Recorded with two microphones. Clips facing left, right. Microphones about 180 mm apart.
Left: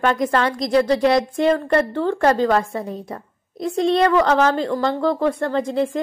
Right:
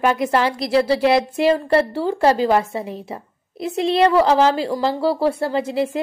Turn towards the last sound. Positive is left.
turn(degrees=-5)  # may be behind; listen again after turning